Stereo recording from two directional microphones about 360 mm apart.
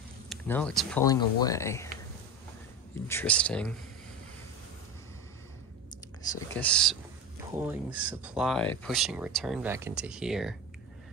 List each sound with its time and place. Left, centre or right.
0.3 s speech: centre
3.1 s speech: centre
6.2 s speech: centre